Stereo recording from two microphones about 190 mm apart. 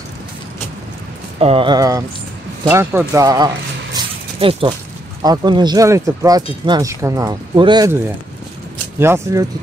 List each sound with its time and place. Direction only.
1.4 s speech: 30° right (ahead or behind)
9.0 s speech: 15° right (ahead or behind)